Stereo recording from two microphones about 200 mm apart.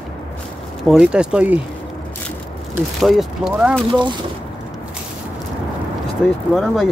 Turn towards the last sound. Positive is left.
turn(degrees=0)  # may be behind; listen again after turning